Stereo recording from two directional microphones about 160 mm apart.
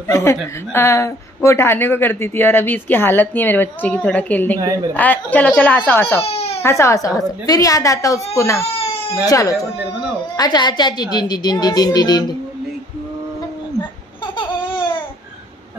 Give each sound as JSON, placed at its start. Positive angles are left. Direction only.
{"t": 0.1, "sound": "a woman's voice", "side_deg": 15}
{"t": 6.2, "sound": "baby cry", "side_deg": 40}
{"t": 6.6, "sound": "a child's voice", "side_deg": 20}
{"t": 14.2, "sound": "laughter", "side_deg": 30}